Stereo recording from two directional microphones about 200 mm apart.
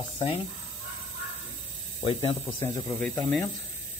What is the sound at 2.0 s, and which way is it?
Speech, 30° left (ahead or behind).